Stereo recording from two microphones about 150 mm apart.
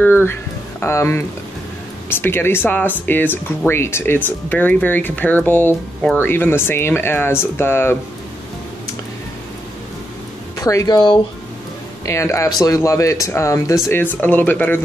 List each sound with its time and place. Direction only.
0.0 s speech: 15° left (ahead or behind)
10.6 s speech: 20° left (ahead or behind)